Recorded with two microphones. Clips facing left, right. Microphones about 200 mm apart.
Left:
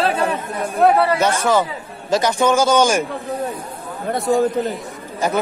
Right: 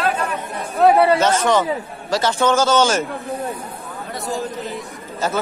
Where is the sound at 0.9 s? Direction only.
25° right (ahead or behind).